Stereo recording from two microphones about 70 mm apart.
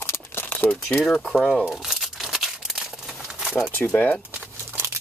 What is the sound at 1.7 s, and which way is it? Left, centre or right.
Crumpling, centre.